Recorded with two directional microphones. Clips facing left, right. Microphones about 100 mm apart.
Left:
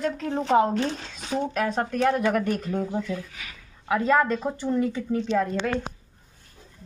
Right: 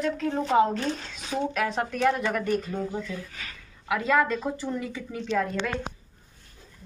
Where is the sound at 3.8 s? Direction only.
35° left (ahead or behind).